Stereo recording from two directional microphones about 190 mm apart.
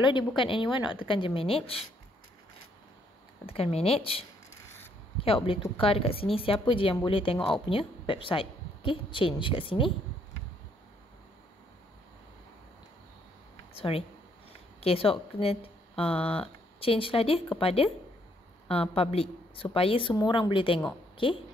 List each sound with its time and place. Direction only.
0.4 s a woman's voice: 25° left (ahead or behind)
3.4 s a woman's voice: 30° left (ahead or behind)
13.7 s a woman's voice: 30° left (ahead or behind)